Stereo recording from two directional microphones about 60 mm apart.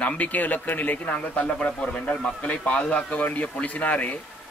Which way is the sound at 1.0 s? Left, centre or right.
Centre.